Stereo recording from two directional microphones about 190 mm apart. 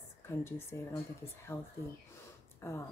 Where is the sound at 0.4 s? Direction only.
10° left (ahead or behind).